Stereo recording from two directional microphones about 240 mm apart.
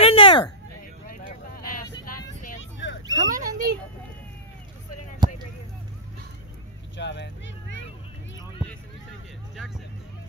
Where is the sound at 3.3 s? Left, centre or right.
Right.